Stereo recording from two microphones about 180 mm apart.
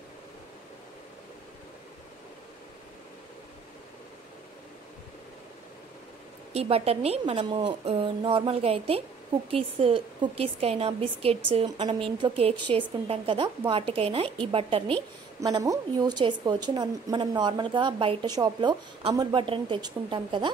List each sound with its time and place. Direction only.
6.5 s a woman's voice: 35° right (ahead or behind)
15.4 s a woman's voice: 20° right (ahead or behind)